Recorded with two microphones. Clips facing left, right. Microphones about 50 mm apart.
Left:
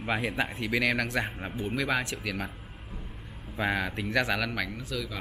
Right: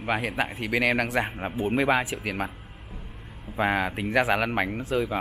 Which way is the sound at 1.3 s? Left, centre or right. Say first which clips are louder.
Right 6 dB; right.